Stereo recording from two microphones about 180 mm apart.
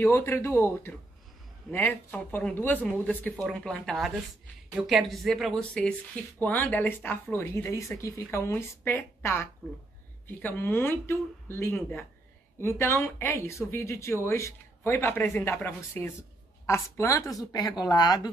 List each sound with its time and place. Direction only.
0.0 s a woman's voice: 15° left (ahead or behind)